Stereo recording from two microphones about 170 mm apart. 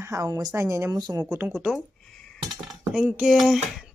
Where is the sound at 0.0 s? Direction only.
20° right (ahead or behind).